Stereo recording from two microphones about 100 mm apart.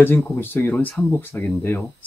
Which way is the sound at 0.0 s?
20° left (ahead or behind).